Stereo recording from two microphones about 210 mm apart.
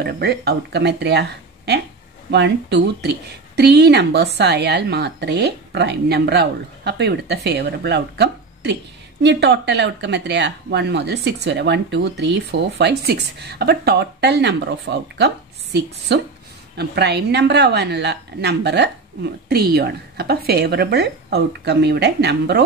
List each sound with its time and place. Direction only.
0.0 s speech: 50° right (ahead or behind)
2.3 s speech: 55° right (ahead or behind)